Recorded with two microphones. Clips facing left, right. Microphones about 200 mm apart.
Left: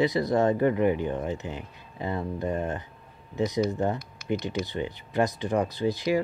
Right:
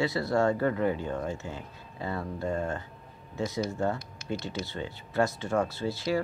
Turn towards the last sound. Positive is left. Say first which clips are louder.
# left 4 dB
turn(degrees=15)  # may be behind; listen again after turning